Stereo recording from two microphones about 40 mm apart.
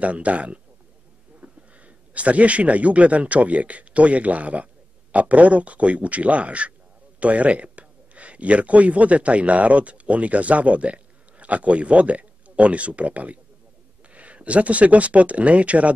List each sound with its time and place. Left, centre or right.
0.0 s speech: right